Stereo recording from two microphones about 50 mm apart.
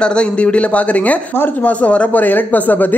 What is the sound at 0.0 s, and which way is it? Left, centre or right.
A man's voice, centre.